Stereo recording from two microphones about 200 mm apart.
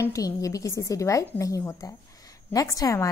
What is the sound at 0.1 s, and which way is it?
Speech, 15° left (ahead or behind).